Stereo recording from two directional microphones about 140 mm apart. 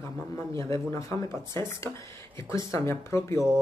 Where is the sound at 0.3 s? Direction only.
20° left (ahead or behind).